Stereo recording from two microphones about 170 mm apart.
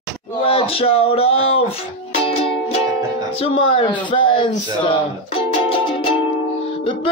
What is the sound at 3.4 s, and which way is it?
Speech, 30° left (ahead or behind).